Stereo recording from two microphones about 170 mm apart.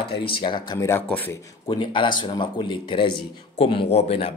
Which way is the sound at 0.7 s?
15° left (ahead or behind).